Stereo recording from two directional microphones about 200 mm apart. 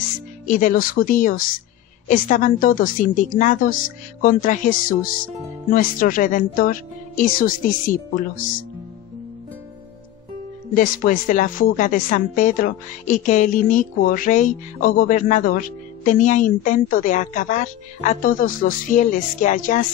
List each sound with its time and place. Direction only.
0.5 s a woman's voice: 40° left (ahead or behind)
10.7 s a woman's voice: 45° left (ahead or behind)